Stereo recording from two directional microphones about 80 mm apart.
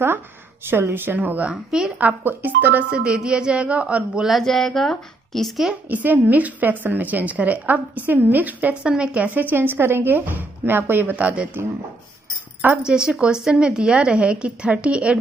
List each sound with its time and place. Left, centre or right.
0.7 s a woman's voice: right
1.5 s a woman's voice: centre
2.0 s a woman's voice: right
4.3 s speech: centre
5.7 s a woman's voice: right
12.8 s a woman's voice: centre